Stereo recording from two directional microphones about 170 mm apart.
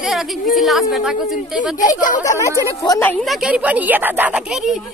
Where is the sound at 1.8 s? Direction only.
50° left (ahead or behind).